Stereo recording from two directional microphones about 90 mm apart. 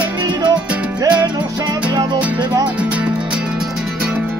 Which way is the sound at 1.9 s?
50° right (ahead or behind).